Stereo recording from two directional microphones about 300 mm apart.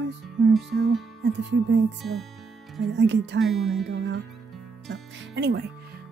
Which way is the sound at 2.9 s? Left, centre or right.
Right.